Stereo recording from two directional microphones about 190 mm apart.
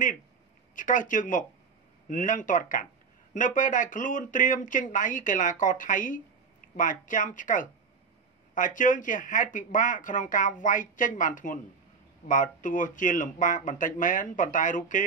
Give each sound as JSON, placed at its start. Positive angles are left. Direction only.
{"t": 0.7, "sound": "speech", "side_deg": 45}